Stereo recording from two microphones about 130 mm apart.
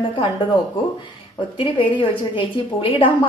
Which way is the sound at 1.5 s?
40° left (ahead or behind).